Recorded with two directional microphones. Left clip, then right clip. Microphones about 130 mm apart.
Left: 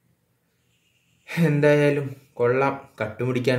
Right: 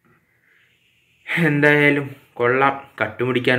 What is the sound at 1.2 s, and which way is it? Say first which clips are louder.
Speech: right 4 dB; 30° left (ahead or behind).